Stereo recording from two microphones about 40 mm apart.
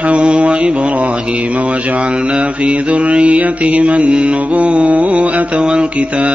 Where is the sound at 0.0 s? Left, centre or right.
Right.